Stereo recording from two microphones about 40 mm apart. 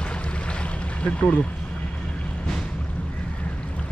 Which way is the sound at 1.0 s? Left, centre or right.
Left.